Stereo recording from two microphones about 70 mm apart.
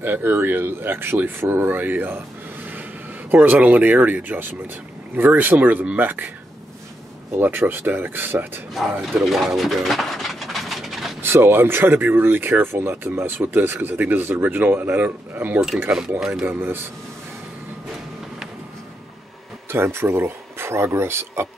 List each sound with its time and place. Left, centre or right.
0.0 s speech: right
7.3 s speech: right
8.7 s pigeon: centre
11.2 s speech: right
16.2 s speech: centre
16.4 s speech: right
19.7 s speech: right